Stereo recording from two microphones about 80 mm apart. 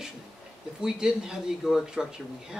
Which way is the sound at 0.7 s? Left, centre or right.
Centre.